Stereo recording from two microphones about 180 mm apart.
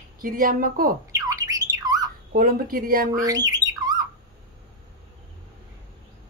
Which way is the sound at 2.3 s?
55° right (ahead or behind).